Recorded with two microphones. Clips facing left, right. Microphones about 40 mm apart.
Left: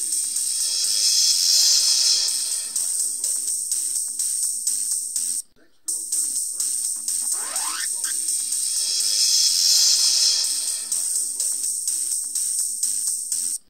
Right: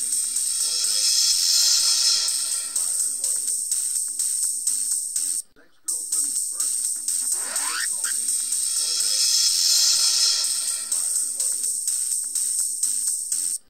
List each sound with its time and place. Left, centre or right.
0.1 s music: right
7.6 s music: right
8.5 s music: right